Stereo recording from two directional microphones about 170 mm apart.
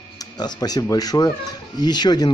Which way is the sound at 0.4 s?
25° left (ahead or behind).